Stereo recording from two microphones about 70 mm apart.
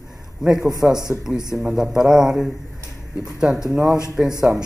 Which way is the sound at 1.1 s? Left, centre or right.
Right.